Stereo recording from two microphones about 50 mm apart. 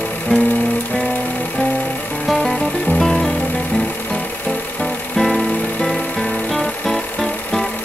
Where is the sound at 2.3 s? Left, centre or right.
Centre.